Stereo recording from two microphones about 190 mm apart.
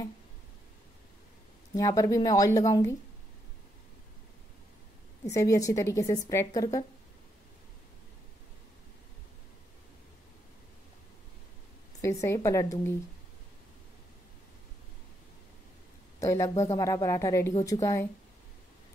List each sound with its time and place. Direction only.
1.8 s a woman's voice: 20° left (ahead or behind)
5.3 s a woman's voice: 20° left (ahead or behind)
12.0 s a woman's voice: 15° left (ahead or behind)
16.2 s a man's voice: 15° left (ahead or behind)